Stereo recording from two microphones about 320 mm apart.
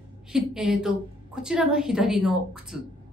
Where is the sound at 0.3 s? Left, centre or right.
Centre.